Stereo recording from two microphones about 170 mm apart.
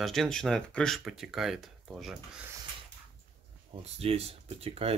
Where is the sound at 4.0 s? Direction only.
35° right (ahead or behind).